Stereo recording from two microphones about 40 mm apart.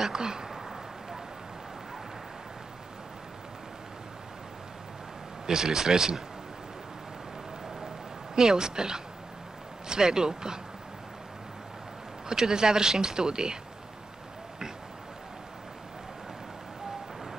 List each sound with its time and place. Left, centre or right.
0.0 s speech: centre
5.5 s speech: centre
8.4 s speech: centre
12.3 s speech: centre